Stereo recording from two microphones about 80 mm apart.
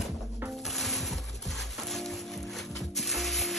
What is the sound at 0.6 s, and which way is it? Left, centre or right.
Music, centre.